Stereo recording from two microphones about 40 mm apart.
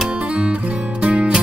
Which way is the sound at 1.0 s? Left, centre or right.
Right.